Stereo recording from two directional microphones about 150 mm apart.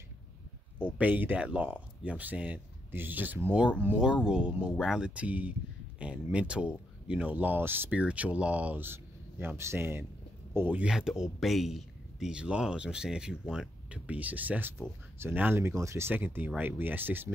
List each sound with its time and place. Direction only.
0.7 s speech: 10° right (ahead or behind)